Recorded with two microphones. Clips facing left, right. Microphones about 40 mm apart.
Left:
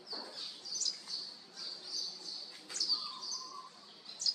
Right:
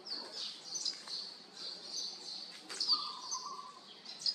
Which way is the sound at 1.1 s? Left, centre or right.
Right.